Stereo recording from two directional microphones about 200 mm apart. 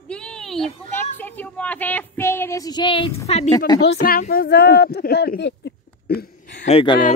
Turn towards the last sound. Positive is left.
turn(degrees=25)  # may be behind; listen again after turning